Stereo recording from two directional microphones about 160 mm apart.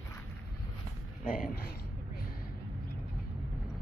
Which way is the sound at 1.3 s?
65° left (ahead or behind).